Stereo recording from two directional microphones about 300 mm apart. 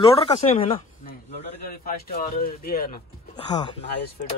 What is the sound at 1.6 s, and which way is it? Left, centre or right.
Speech, left.